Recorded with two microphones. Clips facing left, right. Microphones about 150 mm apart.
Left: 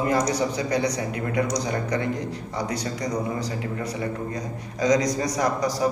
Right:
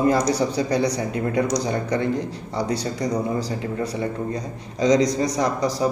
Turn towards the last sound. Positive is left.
turn(degrees=-25)  # may be behind; listen again after turning